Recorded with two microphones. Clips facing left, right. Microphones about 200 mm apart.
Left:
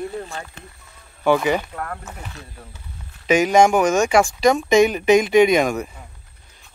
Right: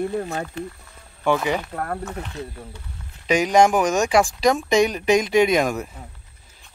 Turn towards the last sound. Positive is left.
turn(degrees=0)  # may be behind; listen again after turning